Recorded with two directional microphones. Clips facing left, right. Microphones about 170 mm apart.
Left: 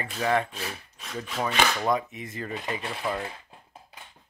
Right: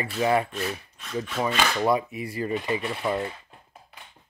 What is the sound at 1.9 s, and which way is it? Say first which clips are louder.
Speech: right 3 dB; 5° right (ahead or behind).